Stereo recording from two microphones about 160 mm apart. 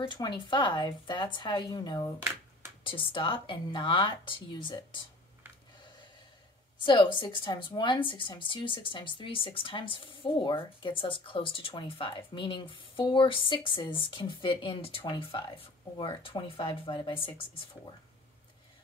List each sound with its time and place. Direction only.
0.0 s a woman's voice: 30° left (ahead or behind)
6.8 s a woman's voice: 30° left (ahead or behind)